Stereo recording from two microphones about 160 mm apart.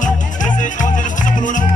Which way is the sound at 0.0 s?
50° left (ahead or behind).